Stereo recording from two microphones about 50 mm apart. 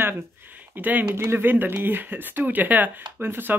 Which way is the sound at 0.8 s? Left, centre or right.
Right.